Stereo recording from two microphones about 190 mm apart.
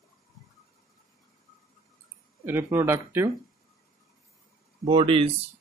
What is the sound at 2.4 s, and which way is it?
Speech, 10° right (ahead or behind).